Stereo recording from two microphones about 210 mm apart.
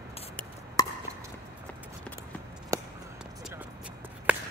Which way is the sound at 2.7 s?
15° right (ahead or behind).